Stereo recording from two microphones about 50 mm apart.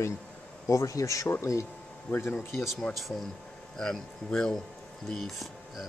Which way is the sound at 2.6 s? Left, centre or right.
Centre.